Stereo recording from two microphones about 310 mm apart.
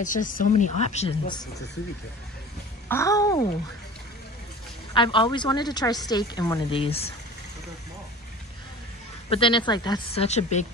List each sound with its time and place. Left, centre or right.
0.0 s speech: left
2.9 s a woman's voice: centre
4.9 s a woman's voice: centre
9.3 s a woman's voice: centre